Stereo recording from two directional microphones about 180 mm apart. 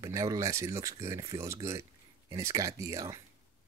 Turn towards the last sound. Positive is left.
turn(degrees=-15)  # may be behind; listen again after turning